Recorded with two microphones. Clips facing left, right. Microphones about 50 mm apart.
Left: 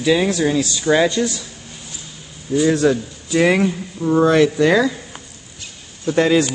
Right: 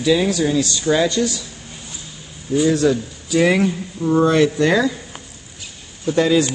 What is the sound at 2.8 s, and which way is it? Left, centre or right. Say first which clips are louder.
Speech: left 1 dB; left.